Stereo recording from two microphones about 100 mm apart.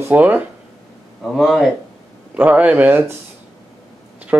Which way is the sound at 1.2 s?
Centre (ahead or behind).